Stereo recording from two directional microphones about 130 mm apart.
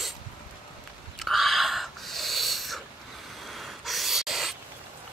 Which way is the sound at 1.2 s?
Centre (ahead or behind).